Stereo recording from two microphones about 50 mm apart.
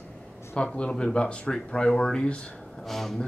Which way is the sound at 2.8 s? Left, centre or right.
Centre.